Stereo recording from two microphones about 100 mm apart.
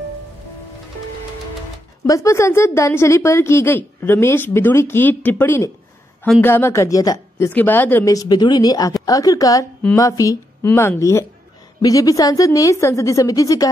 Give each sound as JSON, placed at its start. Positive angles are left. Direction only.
{"t": 2.0, "sound": "a woman's voice", "side_deg": 30}
{"t": 7.5, "sound": "a woman's voice", "side_deg": 20}
{"t": 8.1, "sound": "a woman's voice", "side_deg": 40}